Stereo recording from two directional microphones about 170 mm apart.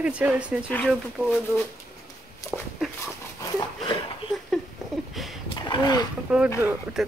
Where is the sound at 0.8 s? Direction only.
Centre (ahead or behind).